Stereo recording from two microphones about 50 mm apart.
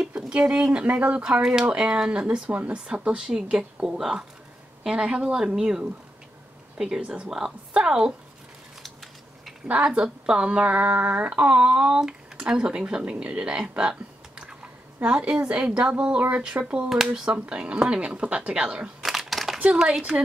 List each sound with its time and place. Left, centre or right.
0.3 s speech: centre
0.8 s speech: right
1.4 s speech: centre
9.7 s speech: right
11.8 s speech: centre
15.0 s speech: right
16.9 s speech: centre
17.2 s speech: centre
19.0 s a sound: centre
19.6 s speech: centre